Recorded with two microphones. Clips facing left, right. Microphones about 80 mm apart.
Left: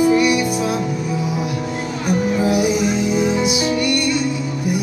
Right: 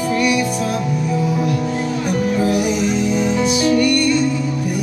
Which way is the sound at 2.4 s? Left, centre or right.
Centre.